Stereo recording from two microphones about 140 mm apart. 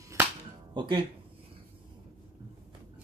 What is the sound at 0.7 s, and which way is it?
Speech, 35° right (ahead or behind).